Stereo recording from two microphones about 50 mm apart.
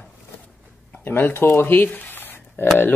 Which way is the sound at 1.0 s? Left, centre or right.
Left.